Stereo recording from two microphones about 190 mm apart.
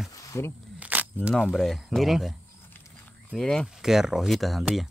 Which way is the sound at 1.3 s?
Centre (ahead or behind).